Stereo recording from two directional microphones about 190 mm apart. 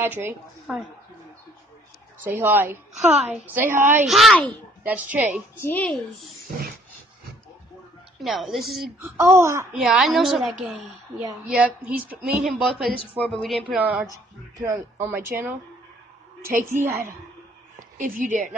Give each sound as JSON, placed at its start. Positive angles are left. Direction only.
{"t": 0.0, "sound": "speech", "side_deg": -10}
{"t": 2.3, "sound": "speech", "side_deg": -10}
{"t": 4.1, "sound": "a woman's voice", "side_deg": 0}
{"t": 5.6, "sound": "a woman's voice", "side_deg": 10}
{"t": 8.2, "sound": "a woman's voice", "side_deg": 0}
{"t": 9.0, "sound": "speech", "side_deg": -15}
{"t": 9.8, "sound": "a woman's voice", "side_deg": 0}
{"t": 17.7, "sound": "speech", "side_deg": -45}